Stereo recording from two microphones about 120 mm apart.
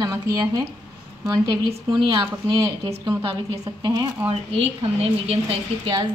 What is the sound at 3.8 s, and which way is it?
Speech, 35° right (ahead or behind).